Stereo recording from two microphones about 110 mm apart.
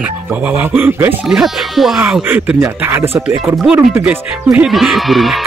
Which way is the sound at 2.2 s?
15° right (ahead or behind).